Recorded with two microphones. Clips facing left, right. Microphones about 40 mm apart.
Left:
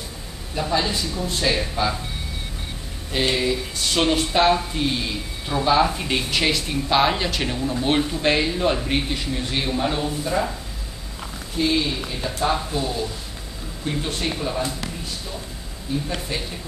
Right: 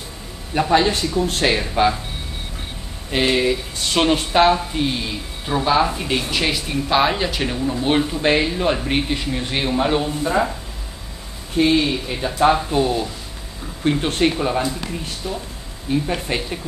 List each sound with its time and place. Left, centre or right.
0.6 s speech: right
3.1 s speech: right
11.5 s speech: right
15.9 s speech: right